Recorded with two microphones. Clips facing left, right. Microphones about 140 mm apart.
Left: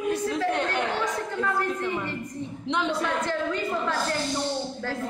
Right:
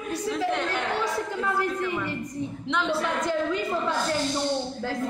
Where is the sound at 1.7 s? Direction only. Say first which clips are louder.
Even; 15° left (ahead or behind).